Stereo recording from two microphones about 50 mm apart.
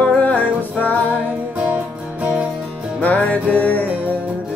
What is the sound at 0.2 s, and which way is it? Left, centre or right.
Music, left.